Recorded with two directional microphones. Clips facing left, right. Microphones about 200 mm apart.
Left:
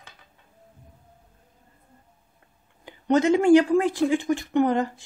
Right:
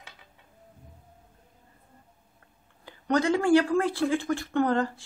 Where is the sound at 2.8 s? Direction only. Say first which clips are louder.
Left 5 dB; 20° left (ahead or behind).